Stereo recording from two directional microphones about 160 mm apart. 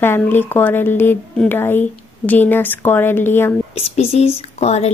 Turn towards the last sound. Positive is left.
turn(degrees=45)  # may be behind; listen again after turning